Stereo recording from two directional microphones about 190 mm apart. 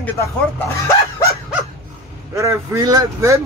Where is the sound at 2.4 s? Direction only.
15° right (ahead or behind).